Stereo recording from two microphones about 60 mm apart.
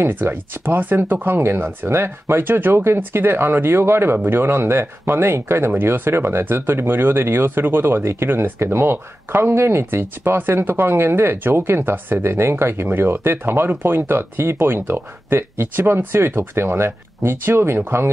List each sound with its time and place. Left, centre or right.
0.0 s speech: right